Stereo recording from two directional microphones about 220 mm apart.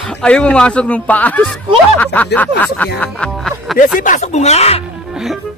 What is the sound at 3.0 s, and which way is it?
Music, 5° left (ahead or behind).